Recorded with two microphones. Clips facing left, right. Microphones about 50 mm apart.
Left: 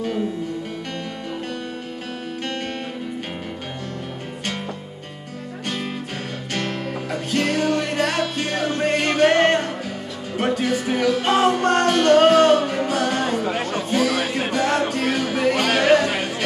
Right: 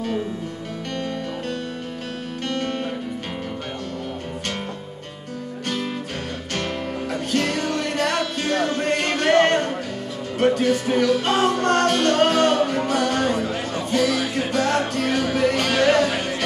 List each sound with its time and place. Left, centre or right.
7.1 s music: centre
14.3 s music: centre